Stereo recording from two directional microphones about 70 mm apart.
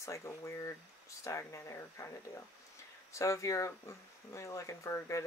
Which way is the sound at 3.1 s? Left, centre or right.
Left.